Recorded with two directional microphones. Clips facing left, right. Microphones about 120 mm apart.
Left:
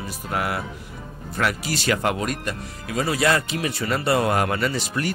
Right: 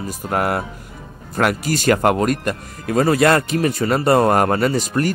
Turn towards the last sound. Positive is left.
turn(degrees=-45)  # may be behind; listen again after turning